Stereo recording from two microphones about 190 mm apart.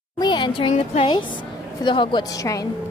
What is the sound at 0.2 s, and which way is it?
Speech, 25° left (ahead or behind).